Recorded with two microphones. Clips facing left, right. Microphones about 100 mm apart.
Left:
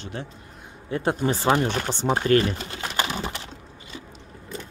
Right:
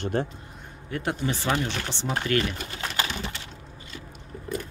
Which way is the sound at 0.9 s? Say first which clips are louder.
Left 5 dB; 30° left (ahead or behind).